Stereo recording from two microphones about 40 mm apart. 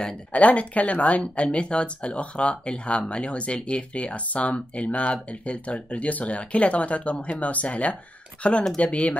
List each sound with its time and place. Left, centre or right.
0.3 s speech: left